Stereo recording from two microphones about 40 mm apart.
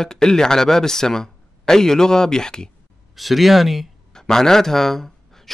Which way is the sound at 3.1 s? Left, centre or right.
Centre.